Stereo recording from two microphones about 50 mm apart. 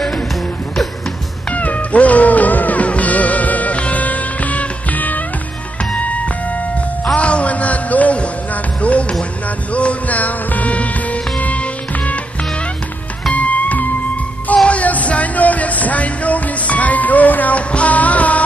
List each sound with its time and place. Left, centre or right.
1.5 s music: left
7.2 s music: left
13.3 s music: left